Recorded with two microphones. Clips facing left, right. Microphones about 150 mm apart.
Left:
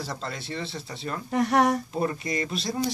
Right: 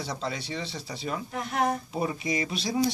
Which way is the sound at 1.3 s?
80° left.